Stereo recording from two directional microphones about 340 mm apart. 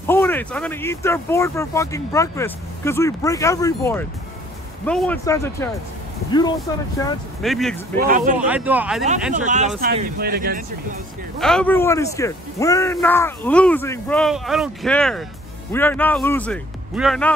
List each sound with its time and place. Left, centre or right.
0.0 s speech: centre
6.7 s speech: centre
8.0 s speech: right
8.5 s speech: centre
9.3 s speech: right
11.3 s speech: centre